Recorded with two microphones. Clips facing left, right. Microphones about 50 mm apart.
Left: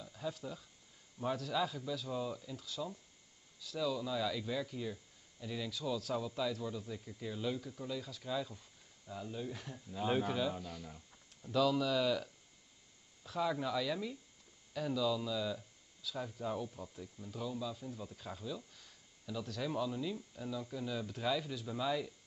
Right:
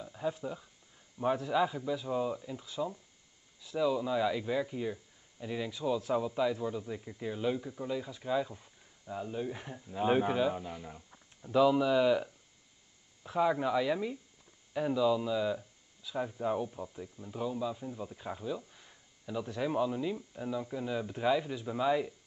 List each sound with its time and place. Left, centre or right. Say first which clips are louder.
0.0 s speech: right 7 dB; right